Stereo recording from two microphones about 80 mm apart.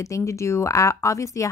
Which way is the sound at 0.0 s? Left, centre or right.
Left.